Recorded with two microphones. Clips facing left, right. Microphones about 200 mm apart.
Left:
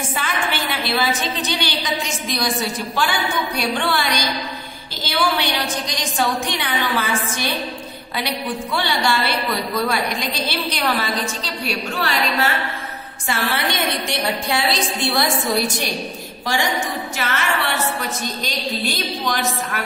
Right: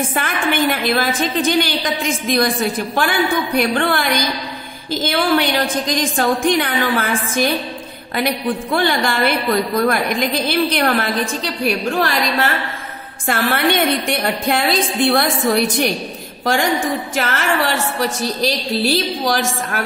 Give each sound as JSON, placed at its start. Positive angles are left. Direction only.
{"t": 0.1, "sound": "a woman's voice", "side_deg": -50}
{"t": 13.3, "sound": "a woman's voice", "side_deg": -55}
{"t": 17.7, "sound": "a woman's voice", "side_deg": -80}